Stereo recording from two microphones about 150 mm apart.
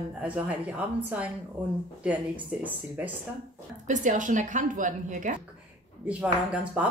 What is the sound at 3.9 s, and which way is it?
A woman's voice, 60° right (ahead or behind).